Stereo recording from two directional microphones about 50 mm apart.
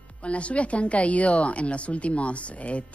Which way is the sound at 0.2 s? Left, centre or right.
Left.